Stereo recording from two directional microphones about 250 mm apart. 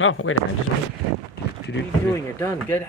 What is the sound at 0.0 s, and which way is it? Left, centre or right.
Speech, left.